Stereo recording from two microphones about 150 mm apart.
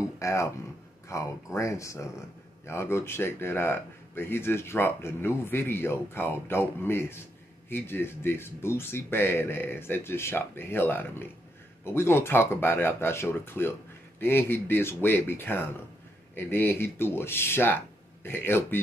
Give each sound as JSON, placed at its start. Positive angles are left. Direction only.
{"t": 0.2, "sound": "speech", "side_deg": 20}